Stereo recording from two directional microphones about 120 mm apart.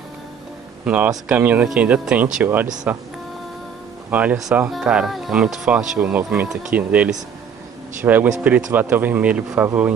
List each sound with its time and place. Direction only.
0.8 s speech: 10° right (ahead or behind)
4.1 s speech: 10° right (ahead or behind)